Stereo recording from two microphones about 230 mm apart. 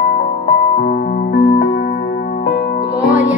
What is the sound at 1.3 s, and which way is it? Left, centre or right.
Music, left.